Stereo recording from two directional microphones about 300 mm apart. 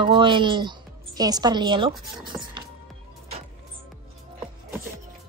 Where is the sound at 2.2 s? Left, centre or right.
Centre.